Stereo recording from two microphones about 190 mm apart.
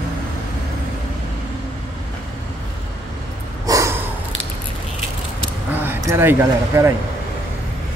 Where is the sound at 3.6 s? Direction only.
15° right (ahead or behind).